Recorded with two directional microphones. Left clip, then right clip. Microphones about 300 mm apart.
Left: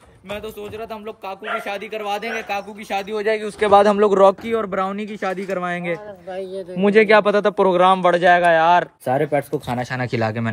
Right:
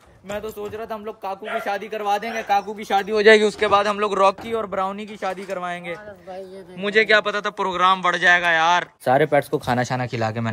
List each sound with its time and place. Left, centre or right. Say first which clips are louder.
1.7 s speech: right 2 dB; centre
3.1 s speech: right 8 dB; right
3.4 s speech: left 4 dB; centre
6.8 s a man's voice: left 4 dB; centre
9.0 s speech: right 2 dB; centre